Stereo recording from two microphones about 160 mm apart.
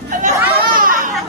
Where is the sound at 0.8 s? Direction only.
60° right (ahead or behind).